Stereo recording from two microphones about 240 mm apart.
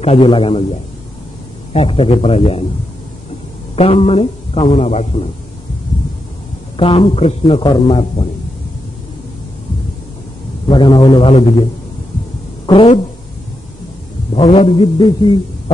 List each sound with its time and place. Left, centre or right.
0.0 s a man's voice: left
3.7 s a man's voice: left
6.8 s a man's voice: left
10.7 s a man's voice: centre
14.3 s a man's voice: left